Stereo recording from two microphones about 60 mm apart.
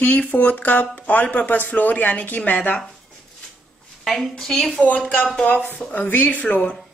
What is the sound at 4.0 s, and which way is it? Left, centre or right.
Speech, centre.